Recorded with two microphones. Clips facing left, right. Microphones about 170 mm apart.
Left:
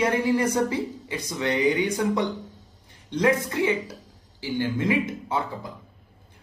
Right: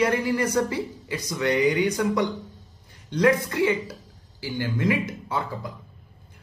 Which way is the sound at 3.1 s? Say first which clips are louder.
Right 2 dB; 20° left (ahead or behind).